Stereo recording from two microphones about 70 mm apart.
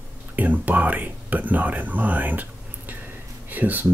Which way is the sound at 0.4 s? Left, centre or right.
Right.